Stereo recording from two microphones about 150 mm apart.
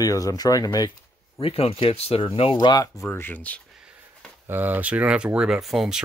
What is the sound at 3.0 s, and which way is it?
Speech, 15° left (ahead or behind).